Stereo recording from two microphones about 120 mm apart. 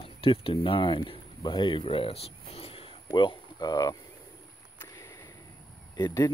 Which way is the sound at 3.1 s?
35° left (ahead or behind).